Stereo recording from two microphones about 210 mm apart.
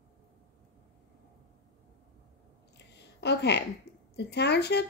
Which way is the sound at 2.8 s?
55° left (ahead or behind).